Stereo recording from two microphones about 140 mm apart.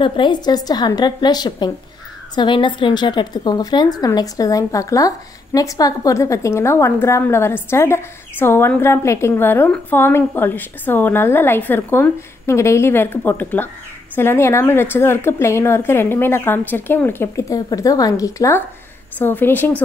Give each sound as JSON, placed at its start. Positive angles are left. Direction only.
{"t": 0.0, "sound": "a woman's voice", "side_deg": 35}